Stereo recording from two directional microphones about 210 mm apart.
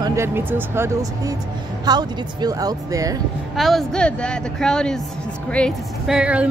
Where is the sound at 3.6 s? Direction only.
Centre (ahead or behind).